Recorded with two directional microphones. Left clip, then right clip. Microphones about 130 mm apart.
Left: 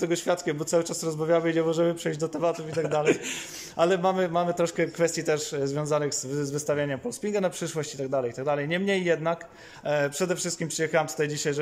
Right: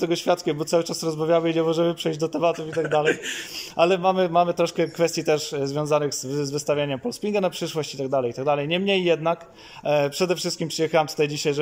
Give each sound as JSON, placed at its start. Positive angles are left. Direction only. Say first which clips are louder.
{"t": 0.0, "sound": "a man's voice", "louder": "right 4 dB", "side_deg": -10}
{"t": 3.7, "sound": "a man's voice", "louder": "right 4 dB", "side_deg": -10}